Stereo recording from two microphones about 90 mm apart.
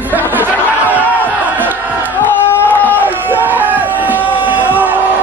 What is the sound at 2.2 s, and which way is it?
Crowd, 20° left (ahead or behind).